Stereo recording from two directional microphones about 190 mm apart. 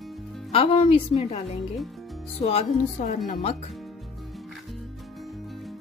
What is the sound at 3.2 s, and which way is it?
Speech, 35° left (ahead or behind).